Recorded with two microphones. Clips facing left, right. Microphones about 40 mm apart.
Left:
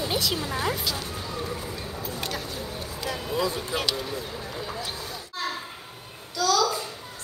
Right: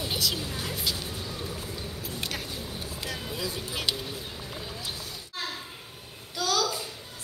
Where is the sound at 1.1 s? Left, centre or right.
Left.